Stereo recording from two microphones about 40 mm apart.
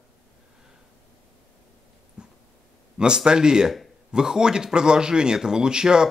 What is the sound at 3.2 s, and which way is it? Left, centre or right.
Speech, centre.